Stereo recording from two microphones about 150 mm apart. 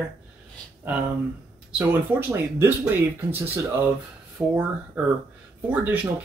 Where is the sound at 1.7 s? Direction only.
10° right (ahead or behind).